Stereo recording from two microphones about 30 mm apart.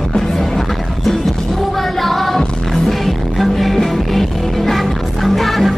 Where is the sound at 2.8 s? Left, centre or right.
Centre.